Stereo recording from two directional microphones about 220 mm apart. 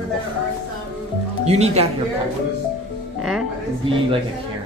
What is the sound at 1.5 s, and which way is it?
Speech, 30° right (ahead or behind).